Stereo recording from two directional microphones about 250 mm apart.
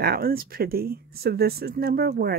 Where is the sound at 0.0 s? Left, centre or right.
Right.